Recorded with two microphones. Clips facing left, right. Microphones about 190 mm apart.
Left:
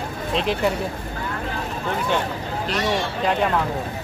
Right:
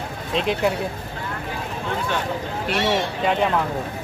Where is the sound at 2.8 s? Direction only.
25° right (ahead or behind).